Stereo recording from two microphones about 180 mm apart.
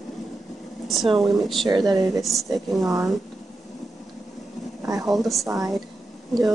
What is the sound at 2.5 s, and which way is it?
Speech, centre (ahead or behind).